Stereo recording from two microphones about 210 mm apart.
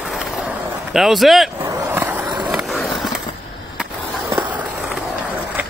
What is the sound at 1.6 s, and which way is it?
Skateboard, 15° right (ahead or behind).